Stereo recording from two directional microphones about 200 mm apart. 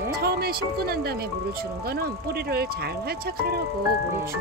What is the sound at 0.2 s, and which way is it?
Music, 50° right (ahead or behind).